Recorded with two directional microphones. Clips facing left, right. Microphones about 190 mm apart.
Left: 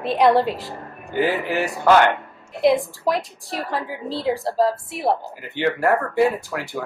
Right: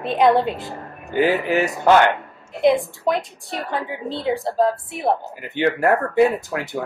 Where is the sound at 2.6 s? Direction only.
Centre (ahead or behind).